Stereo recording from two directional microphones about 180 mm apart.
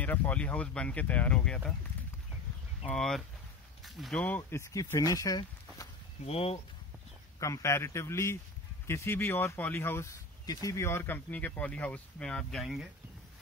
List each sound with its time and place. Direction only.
0.0 s speech: 10° left (ahead or behind)
2.9 s speech: centre (ahead or behind)
4.4 s speech: 15° left (ahead or behind)
6.2 s speech: 35° left (ahead or behind)
7.3 s speech: 15° left (ahead or behind); by 12.8 s centre (ahead or behind)